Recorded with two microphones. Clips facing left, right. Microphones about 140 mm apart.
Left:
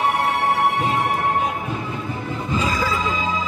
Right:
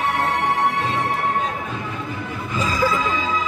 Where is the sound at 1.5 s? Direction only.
20° left (ahead or behind).